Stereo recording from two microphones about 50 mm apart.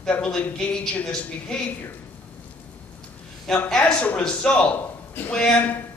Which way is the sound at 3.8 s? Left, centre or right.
Left.